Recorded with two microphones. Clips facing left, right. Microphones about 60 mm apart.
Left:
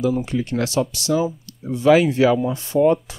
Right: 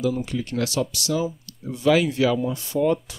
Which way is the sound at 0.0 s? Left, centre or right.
Left.